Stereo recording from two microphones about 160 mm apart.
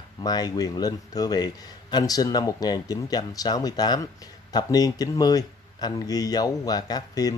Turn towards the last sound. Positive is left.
turn(degrees=25)  # may be behind; listen again after turning